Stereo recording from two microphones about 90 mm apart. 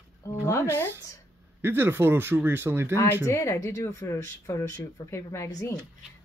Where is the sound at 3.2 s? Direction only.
35° left (ahead or behind).